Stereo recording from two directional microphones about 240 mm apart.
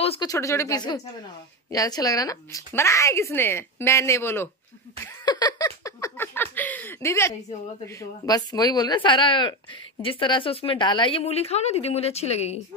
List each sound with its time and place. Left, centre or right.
0.0 s a woman's voice: left
5.0 s a sound: centre
7.8 s a woman's voice: centre